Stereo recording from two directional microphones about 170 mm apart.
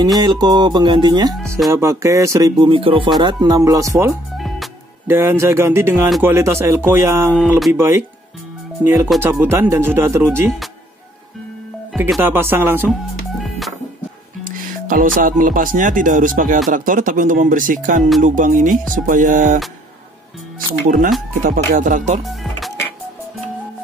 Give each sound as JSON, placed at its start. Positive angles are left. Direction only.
{"t": 0.0, "sound": "speech", "side_deg": -25}
{"t": 7.7, "sound": "speech", "side_deg": -15}
{"t": 12.2, "sound": "speech", "side_deg": -15}
{"t": 13.4, "sound": "music", "side_deg": 0}
{"t": 14.4, "sound": "speech", "side_deg": -55}
{"t": 20.8, "sound": "speech", "side_deg": -50}
{"t": 22.2, "sound": "music", "side_deg": 0}